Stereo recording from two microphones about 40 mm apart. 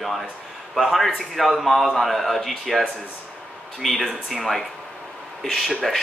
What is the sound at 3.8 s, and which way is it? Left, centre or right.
Speech, centre.